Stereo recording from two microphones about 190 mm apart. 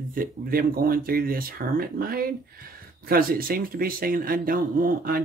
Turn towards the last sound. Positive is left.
turn(degrees=-50)  # may be behind; listen again after turning